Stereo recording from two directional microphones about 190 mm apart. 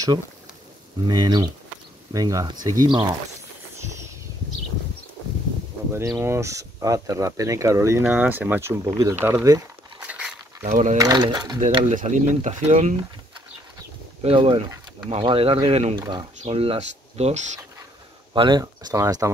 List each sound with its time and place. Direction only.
1.0 s speech: 20° right (ahead or behind)
5.9 s speech: 15° right (ahead or behind)
9.9 s a sound: 5° right (ahead or behind)
10.7 s speech: 40° right (ahead or behind)
11.0 s speech: 20° right (ahead or behind)
11.6 s speech: 40° right (ahead or behind)
14.2 s speech: 30° right (ahead or behind)
18.3 s speech: 25° right (ahead or behind)